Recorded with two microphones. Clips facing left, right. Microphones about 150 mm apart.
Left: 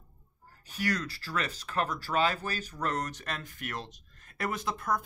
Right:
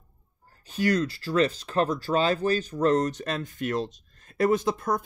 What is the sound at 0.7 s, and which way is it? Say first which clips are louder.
Speech: right 8 dB; 25° right (ahead or behind).